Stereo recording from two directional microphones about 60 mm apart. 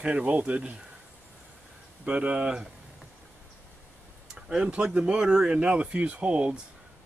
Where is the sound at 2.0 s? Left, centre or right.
Centre.